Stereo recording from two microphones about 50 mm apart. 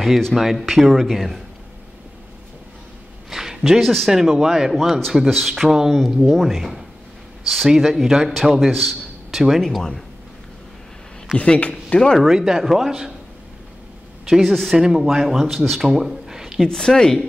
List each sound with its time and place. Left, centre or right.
0.0 s speech: centre
3.3 s a sound: centre
3.8 s speech: centre
4.1 s a man's voice: centre
11.3 s speech: left
12.2 s a man's voice: centre
14.2 s speech: centre
14.8 s a man's voice: centre
15.8 s a sound: centre
16.6 s speech: centre